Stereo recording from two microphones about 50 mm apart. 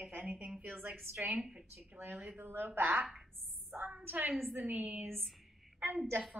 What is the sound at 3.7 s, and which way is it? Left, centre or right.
Speech, right.